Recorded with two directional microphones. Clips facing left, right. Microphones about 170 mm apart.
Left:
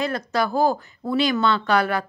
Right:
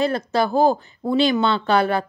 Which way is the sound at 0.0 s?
30° right (ahead or behind).